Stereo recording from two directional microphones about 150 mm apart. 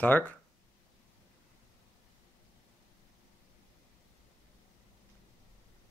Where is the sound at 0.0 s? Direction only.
10° left (ahead or behind).